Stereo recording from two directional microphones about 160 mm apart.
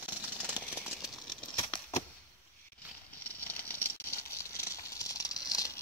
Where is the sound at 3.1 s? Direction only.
10° left (ahead or behind).